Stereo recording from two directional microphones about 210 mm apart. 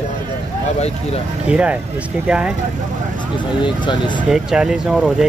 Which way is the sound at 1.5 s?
5° right (ahead or behind).